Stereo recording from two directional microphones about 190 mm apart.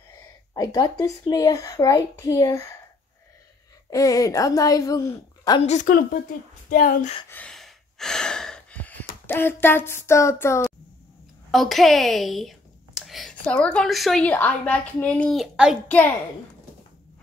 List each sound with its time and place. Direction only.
0.1 s speech: 20° left (ahead or behind)
3.9 s a woman's voice: 20° left (ahead or behind)
5.6 s a woman's voice: 40° left (ahead or behind)
7.2 s gasp: 5° left (ahead or behind)
9.2 s a woman's voice: 10° left (ahead or behind)
11.5 s a woman's voice: centre (ahead or behind)